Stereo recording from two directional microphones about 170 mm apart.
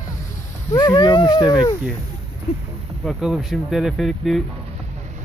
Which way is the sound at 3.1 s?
5° right (ahead or behind).